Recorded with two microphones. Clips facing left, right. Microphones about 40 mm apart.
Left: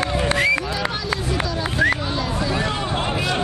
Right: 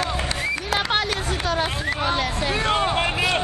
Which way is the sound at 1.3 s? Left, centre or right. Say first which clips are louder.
Even; right.